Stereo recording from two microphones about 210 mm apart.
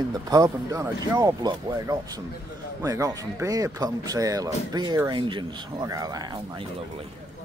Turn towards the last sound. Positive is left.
turn(degrees=-20)  # may be behind; listen again after turning